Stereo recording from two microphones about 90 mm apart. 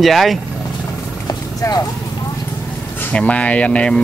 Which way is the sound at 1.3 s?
45° left (ahead or behind).